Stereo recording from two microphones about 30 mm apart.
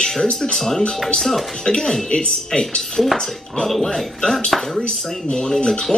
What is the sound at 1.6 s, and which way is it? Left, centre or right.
Speech, left.